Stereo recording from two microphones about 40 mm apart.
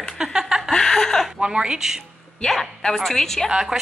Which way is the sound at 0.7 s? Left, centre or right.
Centre.